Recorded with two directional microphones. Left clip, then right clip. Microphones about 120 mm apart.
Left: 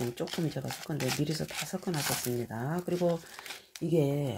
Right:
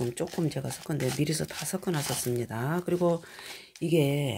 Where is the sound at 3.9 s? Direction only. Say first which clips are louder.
Right 3 dB; 60° right (ahead or behind).